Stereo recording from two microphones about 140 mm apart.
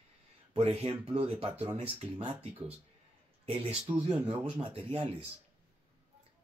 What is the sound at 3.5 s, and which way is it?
Speech, 45° right (ahead or behind).